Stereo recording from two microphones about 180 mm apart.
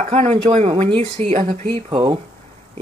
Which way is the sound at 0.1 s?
35° right (ahead or behind).